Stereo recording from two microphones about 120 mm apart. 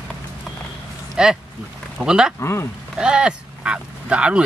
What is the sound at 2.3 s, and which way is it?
Speech, 20° left (ahead or behind).